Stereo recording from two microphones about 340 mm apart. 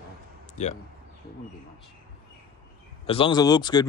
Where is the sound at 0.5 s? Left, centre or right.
Centre.